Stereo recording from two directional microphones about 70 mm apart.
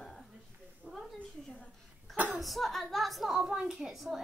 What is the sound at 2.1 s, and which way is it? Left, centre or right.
Speech, right.